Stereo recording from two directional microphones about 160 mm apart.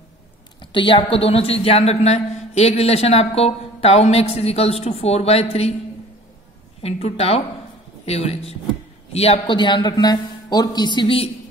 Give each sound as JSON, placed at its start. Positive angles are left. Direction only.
{"t": 0.6, "sound": "a woman's voice", "side_deg": 30}
{"t": 6.8, "sound": "a woman's voice", "side_deg": 40}